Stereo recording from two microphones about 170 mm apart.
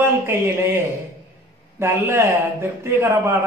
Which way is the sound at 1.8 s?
15° right (ahead or behind).